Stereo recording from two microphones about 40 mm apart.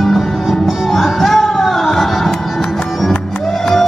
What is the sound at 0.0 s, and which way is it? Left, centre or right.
Music, centre.